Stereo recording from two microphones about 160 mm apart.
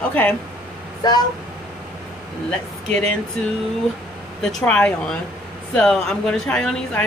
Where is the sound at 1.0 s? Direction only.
25° left (ahead or behind).